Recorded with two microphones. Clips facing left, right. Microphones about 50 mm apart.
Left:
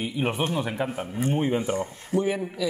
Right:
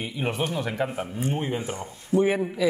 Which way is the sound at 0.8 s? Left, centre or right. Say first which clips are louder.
Even; centre.